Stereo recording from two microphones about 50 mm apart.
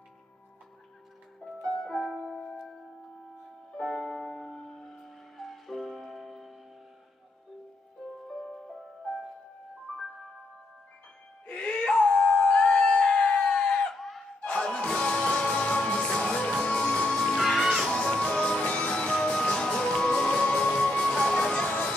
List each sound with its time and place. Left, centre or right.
2.0 s music: centre
3.7 s music: centre
8.3 s music: centre
11.4 s music: left
13.9 s a sound: centre
14.4 s music: left
17.4 s music: centre
17.8 s music: centre